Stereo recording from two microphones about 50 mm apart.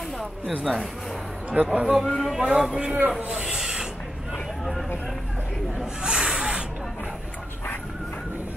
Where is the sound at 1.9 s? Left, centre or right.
Centre.